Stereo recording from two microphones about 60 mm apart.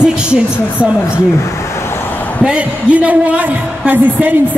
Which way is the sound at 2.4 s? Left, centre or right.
Right.